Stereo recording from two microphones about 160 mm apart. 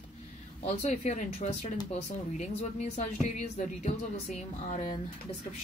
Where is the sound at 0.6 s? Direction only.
45° left (ahead or behind).